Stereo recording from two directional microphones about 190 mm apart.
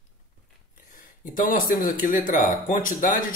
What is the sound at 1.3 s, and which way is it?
Speech, 45° left (ahead or behind).